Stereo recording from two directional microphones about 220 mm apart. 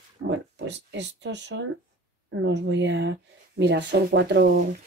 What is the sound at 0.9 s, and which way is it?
Speech, 55° right (ahead or behind).